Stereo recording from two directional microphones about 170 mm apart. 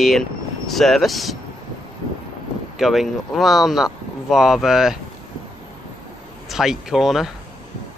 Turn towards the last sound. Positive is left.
turn(degrees=0)  # may be behind; listen again after turning